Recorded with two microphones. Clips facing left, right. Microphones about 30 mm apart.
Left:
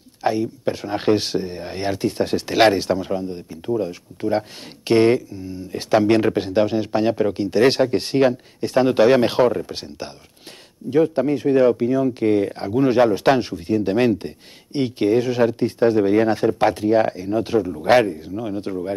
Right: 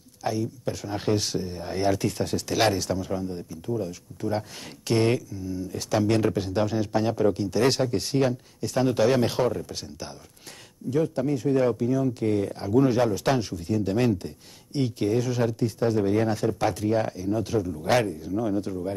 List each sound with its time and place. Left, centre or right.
0.2 s speech: left